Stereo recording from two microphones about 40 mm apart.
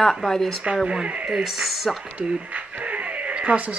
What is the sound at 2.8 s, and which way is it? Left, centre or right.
Cat, right.